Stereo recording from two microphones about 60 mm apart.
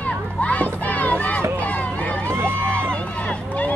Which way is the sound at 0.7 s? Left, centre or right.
Left.